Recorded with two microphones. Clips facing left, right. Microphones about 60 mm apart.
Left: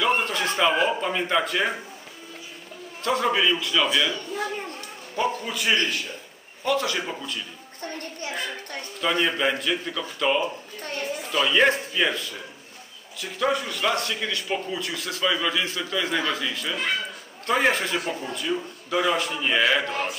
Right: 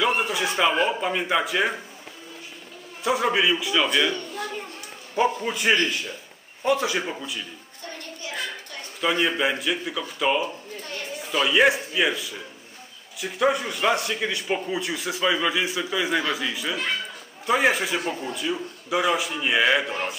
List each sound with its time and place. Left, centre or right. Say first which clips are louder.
0.0 s a man's voice: even; centre
3.0 s a man's voice: right 1 dB; centre
5.1 s a man's voice: right 3 dB; right
9.0 s a man's voice: right 1 dB; centre